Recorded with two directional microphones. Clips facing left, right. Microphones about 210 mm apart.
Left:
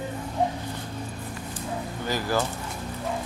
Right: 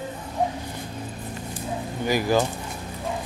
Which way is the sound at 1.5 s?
15° right (ahead or behind).